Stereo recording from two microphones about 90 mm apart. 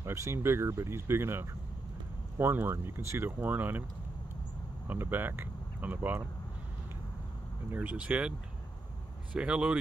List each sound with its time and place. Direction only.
0.0 s speech: 30° right (ahead or behind)
4.8 s speech: 20° right (ahead or behind)
7.7 s speech: 15° right (ahead or behind)